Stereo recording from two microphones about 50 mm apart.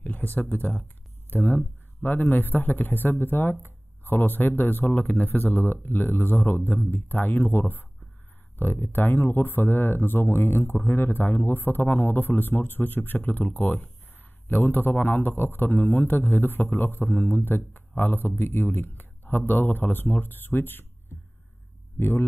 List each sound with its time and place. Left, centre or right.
0.0 s a man's voice: left
21.9 s speech: left